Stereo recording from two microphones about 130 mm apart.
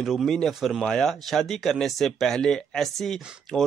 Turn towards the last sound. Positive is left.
turn(degrees=0)  # may be behind; listen again after turning